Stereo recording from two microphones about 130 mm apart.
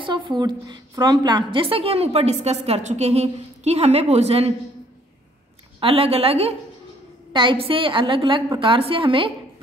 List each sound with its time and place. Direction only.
0.0 s a woman's voice: 40° right (ahead or behind); by 4.5 s 55° right (ahead or behind)
5.8 s a woman's voice: 45° right (ahead or behind)